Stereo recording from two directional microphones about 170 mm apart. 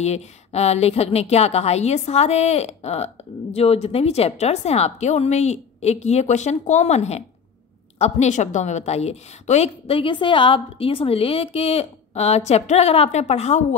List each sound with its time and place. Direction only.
0.0 s a woman's voice: 40° left (ahead or behind)